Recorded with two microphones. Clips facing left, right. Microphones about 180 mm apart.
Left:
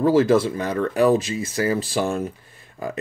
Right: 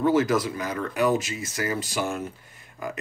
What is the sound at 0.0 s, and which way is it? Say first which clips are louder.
Speech: left 5 dB; 30° left (ahead or behind).